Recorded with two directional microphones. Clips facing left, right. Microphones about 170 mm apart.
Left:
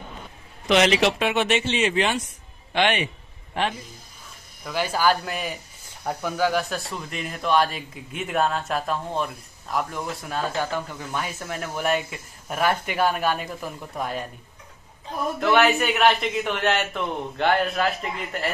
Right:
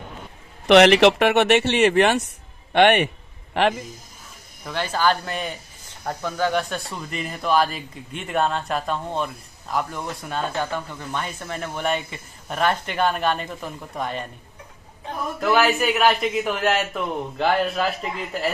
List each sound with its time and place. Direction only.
0.7 s a man's voice: 65° right (ahead or behind)
3.6 s a man's voice: 80° right
4.6 s speech: 10° left (ahead or behind)
15.4 s speech: 5° right (ahead or behind)